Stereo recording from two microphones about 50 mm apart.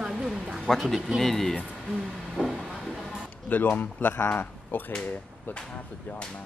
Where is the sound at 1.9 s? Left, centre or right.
Centre.